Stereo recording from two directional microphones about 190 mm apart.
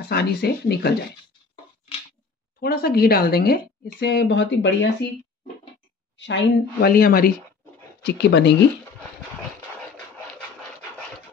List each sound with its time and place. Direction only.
0.1 s a woman's voice: 60° left (ahead or behind)
2.6 s a woman's voice: 55° left (ahead or behind); by 4.7 s 70° left (ahead or behind)
6.1 s a woman's voice: 70° left (ahead or behind)
6.9 s speech: 50° left (ahead or behind)
8.0 s a woman's voice: 65° left (ahead or behind)